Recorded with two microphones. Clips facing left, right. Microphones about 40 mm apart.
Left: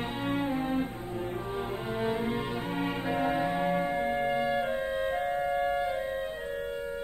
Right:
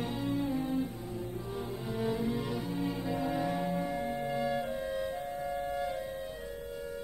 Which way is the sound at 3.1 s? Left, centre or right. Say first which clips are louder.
Left 5 dB; left.